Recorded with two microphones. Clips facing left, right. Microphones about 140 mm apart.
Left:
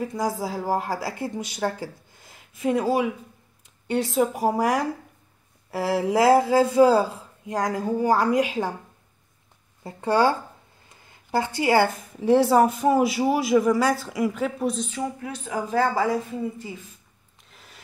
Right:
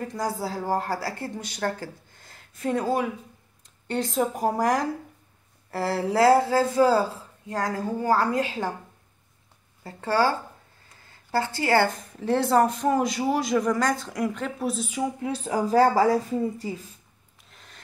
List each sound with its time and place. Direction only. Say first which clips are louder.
0.0 s a woman's voice: left 2 dB; 5° left (ahead or behind)
9.8 s a woman's voice: left 3 dB; 20° left (ahead or behind); by 15.0 s 10° right (ahead or behind)
15.1 s a woman's voice: right 3 dB; 30° right (ahead or behind)
17.5 s a sound: left 1 dB; 5° left (ahead or behind)